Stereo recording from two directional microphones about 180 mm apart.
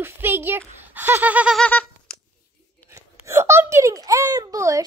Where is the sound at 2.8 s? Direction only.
15° right (ahead or behind).